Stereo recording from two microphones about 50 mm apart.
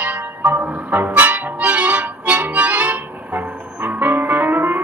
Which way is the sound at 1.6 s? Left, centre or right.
Right.